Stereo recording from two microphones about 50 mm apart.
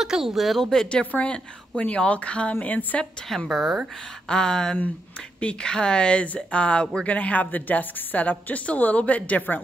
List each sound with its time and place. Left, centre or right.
0.0 s speech: centre
0.7 s speech: centre; by 3.1 s left
3.4 s speech: centre
4.3 s speech: centre; by 9.6 s left